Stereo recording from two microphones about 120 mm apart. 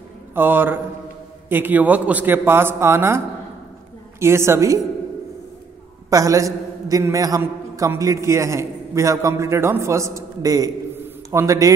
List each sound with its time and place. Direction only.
0.3 s a man's voice: 15° right (ahead or behind)
4.2 s a man's voice: 20° right (ahead or behind)
6.0 s a man's voice: 30° right (ahead or behind)